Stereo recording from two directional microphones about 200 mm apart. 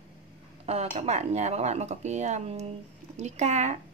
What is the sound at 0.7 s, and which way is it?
Speech, 30° right (ahead or behind).